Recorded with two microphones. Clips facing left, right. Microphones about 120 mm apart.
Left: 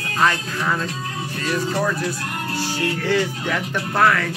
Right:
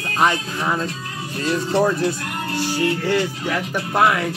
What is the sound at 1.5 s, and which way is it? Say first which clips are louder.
Speech: right 4 dB; 25° right (ahead or behind).